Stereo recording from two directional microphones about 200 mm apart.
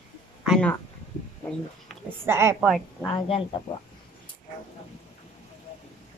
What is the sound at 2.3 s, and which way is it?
Speech, 10° right (ahead or behind).